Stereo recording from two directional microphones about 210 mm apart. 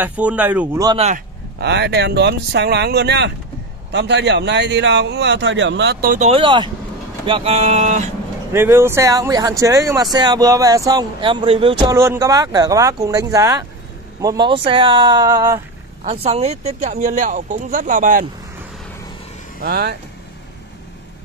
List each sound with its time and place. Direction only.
0.0 s speech: 5° right (ahead or behind)
0.8 s speech: 25° right (ahead or behind)
1.1 s speech: 55° right (ahead or behind)
6.3 s speech: 20° right (ahead or behind)
8.5 s speech: 10° right (ahead or behind)
11.8 s speech: 15° right (ahead or behind)
16.0 s speech: 30° right (ahead or behind)
19.6 s speech: 50° right (ahead or behind)